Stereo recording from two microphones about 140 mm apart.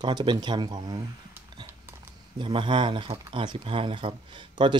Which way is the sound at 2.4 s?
35° right (ahead or behind).